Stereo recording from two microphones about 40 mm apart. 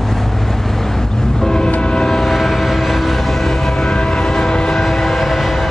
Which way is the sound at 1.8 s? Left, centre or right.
Centre.